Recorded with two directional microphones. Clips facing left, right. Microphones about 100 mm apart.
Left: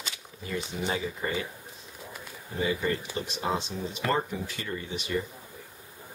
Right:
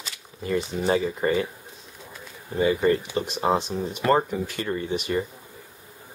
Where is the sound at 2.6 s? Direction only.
50° right (ahead or behind).